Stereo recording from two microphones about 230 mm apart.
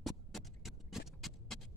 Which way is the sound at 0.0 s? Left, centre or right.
Centre.